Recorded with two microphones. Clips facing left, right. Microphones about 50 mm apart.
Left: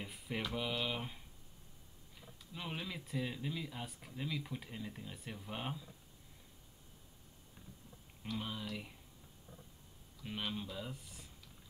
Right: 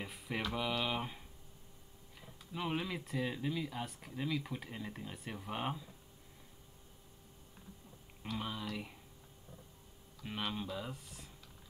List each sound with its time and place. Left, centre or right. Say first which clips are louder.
0.0 s mantra: right 2 dB; centre
0.6 s speech: right 4 dB; centre
2.5 s speech: right 6 dB; right
8.2 s speech: right 1 dB; centre
10.2 s speech: right 2 dB; centre